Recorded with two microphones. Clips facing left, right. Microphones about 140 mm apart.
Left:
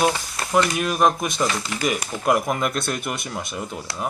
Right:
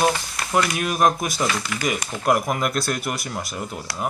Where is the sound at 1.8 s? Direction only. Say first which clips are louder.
Left 1 dB; centre (ahead or behind).